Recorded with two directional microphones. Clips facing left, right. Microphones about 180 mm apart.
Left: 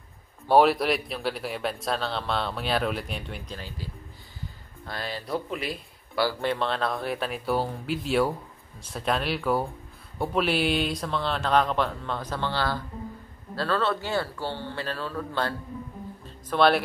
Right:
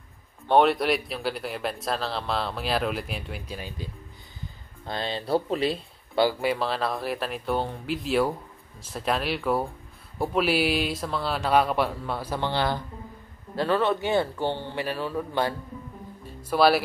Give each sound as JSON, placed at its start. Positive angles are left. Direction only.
{"t": 0.5, "sound": "speech", "side_deg": 0}
{"t": 3.5, "sound": "speech", "side_deg": -20}
{"t": 6.4, "sound": "speech", "side_deg": -5}